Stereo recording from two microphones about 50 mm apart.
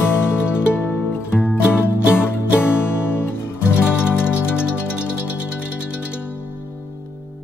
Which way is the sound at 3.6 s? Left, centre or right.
Right.